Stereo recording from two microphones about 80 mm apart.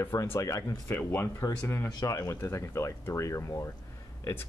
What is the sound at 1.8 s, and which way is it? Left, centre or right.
Speech, left.